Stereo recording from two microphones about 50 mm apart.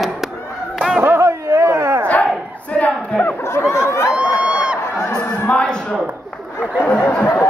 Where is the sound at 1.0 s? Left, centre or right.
Right.